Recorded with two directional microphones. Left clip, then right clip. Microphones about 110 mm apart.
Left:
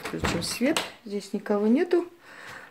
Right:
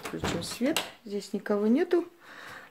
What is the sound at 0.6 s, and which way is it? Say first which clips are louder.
Speech: left 3 dB; 5° right (ahead or behind).